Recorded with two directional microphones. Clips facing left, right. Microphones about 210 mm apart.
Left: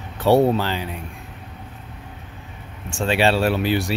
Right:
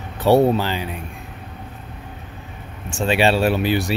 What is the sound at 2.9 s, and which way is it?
Speech, 15° right (ahead or behind).